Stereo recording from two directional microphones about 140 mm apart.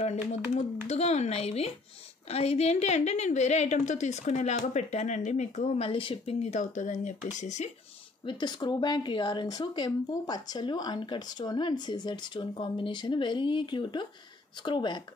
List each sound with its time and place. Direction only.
0.3 s a woman's voice: 55° left (ahead or behind)
5.9 s a woman's voice: 40° left (ahead or behind); by 7.7 s 55° left (ahead or behind)
8.3 s speech: 30° left (ahead or behind)